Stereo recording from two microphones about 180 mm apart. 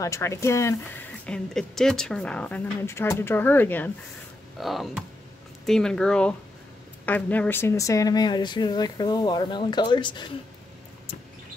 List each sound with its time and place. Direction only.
0.0 s speech: 15° left (ahead or behind)
4.6 s speech: centre (ahead or behind); by 10.3 s 25° left (ahead or behind)